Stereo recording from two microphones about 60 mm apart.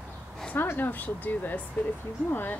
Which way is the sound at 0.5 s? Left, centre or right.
Left.